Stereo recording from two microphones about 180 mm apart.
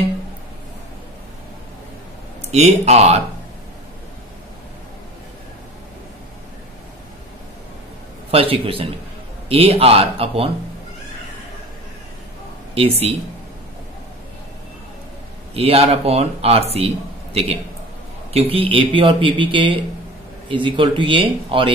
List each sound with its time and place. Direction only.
2.5 s speech: 40° right (ahead or behind)
8.3 s speech: 30° right (ahead or behind)
12.7 s speech: 30° right (ahead or behind)
15.5 s speech: 35° right (ahead or behind)